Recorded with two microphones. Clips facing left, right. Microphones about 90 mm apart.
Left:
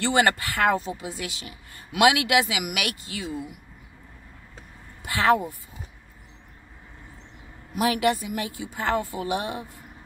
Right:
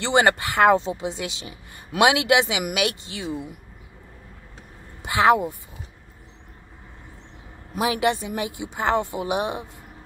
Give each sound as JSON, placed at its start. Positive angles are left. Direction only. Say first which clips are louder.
{"t": 0.0, "sound": "speech", "louder": "right 2 dB", "side_deg": -20}
{"t": 5.0, "sound": "speech", "louder": "right 3 dB", "side_deg": -20}
{"t": 7.8, "sound": "speech", "louder": "right 1 dB", "side_deg": -20}